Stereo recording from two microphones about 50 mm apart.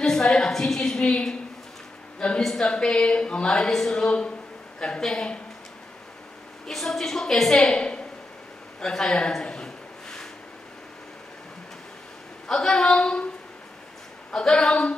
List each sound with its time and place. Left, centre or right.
0.0 s a woman's voice: centre
2.1 s a sound: centre
2.4 s a woman's voice: centre
6.7 s a woman's voice: centre
8.8 s a woman's voice: centre
9.4 s a sound: centre
12.4 s a woman's voice: centre
14.3 s a woman's voice: centre